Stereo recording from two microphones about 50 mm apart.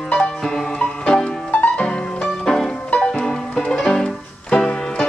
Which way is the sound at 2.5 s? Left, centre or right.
Centre.